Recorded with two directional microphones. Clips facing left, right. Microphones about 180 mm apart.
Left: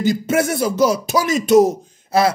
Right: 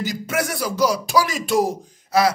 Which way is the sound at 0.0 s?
25° left (ahead or behind).